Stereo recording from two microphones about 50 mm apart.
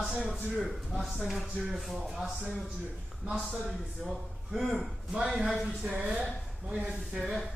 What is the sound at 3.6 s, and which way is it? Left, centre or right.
A man's voice, centre.